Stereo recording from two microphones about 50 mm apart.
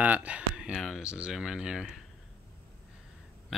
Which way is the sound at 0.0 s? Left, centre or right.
Right.